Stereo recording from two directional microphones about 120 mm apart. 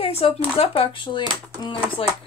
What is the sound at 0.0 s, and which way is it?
Speech, 55° left (ahead or behind).